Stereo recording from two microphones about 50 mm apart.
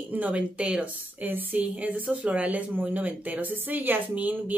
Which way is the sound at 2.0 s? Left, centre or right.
Right.